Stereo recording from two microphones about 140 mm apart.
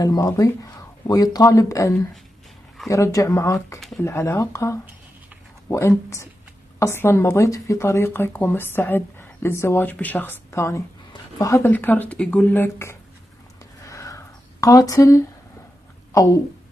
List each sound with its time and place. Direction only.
0.0 s a woman's voice: 25° left (ahead or behind)
11.7 s a woman's voice: 10° left (ahead or behind)
13.8 s a sound: 25° left (ahead or behind)